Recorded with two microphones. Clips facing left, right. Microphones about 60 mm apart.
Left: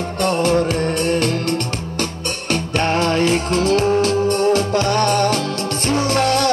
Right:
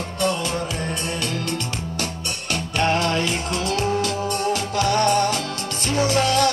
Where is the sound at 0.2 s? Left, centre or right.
Left.